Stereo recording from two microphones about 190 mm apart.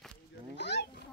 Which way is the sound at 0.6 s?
60° left (ahead or behind).